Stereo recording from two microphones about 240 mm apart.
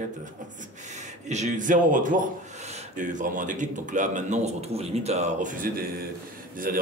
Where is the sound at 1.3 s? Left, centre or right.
Right.